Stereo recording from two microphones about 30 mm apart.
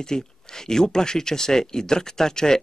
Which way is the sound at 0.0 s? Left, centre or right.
Left.